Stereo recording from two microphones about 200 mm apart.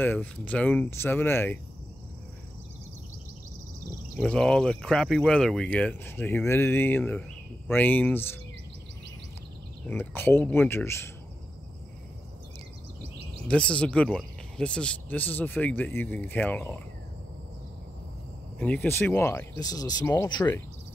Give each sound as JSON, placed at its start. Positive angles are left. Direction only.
{"t": 0.0, "sound": "speech", "side_deg": 10}
{"t": 4.2, "sound": "speech", "side_deg": 5}
{"t": 9.8, "sound": "speech", "side_deg": 10}
{"t": 13.5, "sound": "speech", "side_deg": 5}
{"t": 18.6, "sound": "speech", "side_deg": 5}